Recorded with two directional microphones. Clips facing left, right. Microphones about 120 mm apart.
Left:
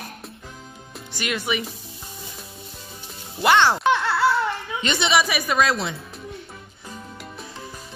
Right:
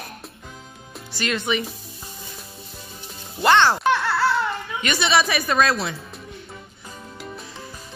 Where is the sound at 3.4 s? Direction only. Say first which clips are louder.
Right 1 dB; 10° left (ahead or behind).